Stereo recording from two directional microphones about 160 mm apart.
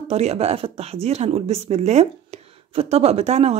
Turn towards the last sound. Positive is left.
turn(degrees=-40)  # may be behind; listen again after turning